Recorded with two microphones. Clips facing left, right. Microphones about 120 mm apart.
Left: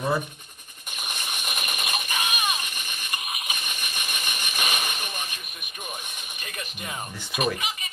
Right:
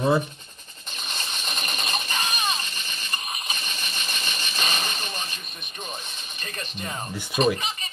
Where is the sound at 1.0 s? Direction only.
10° left (ahead or behind).